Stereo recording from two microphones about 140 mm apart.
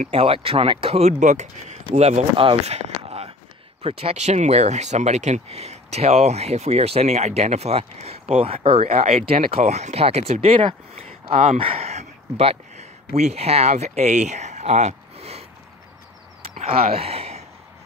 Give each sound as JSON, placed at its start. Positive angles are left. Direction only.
{"t": 0.1, "sound": "speech", "side_deg": -45}
{"t": 1.9, "sound": "speech", "side_deg": -50}
{"t": 16.6, "sound": "speech", "side_deg": -45}